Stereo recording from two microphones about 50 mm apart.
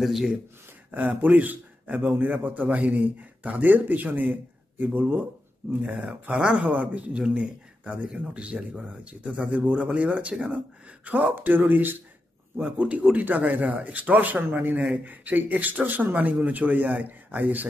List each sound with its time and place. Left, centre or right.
0.0 s speech: centre
0.9 s a man's voice: right
6.4 s speech: right
11.3 s a man's voice: right
12.5 s a man's voice: right